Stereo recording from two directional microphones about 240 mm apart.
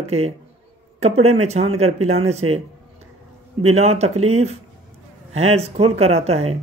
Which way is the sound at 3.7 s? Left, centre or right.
Right.